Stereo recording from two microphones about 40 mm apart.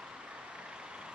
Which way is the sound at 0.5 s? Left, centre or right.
Right.